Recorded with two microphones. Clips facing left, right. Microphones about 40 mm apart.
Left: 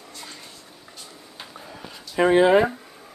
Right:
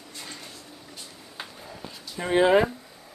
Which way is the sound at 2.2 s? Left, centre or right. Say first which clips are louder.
Left 12 dB; left.